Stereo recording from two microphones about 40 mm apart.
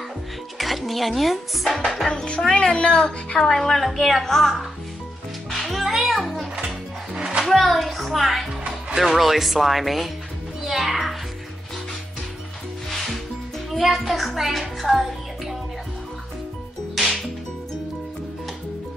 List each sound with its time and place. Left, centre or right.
0.6 s speech: centre
2.0 s a woman's voice: left; by 4.5 s centre
5.5 s music: centre
7.2 s music: centre
7.4 s a child's voice: centre
10.6 s music: centre
12.9 s music: centre
13.7 s speech: centre
14.8 s music: centre
17.0 s whip: centre